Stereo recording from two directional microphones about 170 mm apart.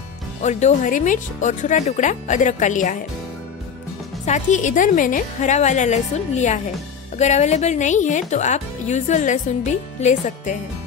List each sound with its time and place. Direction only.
0.4 s a woman's voice: 45° left (ahead or behind)
4.3 s a woman's voice: 45° left (ahead or behind)